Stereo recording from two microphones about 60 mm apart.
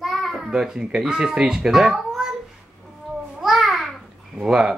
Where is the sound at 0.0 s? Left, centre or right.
Centre.